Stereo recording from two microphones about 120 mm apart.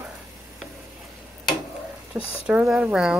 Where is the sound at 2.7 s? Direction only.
5° right (ahead or behind).